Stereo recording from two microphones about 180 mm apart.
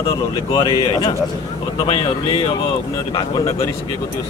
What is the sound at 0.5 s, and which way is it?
Speech, 20° left (ahead or behind).